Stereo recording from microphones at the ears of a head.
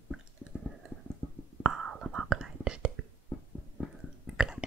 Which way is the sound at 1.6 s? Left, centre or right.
Right.